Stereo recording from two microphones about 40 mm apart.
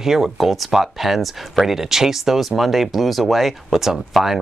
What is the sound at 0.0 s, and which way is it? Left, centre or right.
Speech, centre.